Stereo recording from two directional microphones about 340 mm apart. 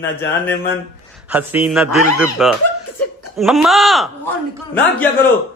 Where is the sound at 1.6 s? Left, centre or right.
Centre.